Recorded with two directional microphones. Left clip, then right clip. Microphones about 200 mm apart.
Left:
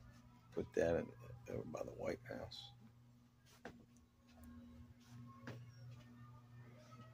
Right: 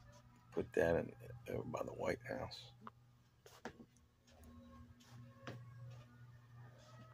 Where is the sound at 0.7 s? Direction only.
15° right (ahead or behind).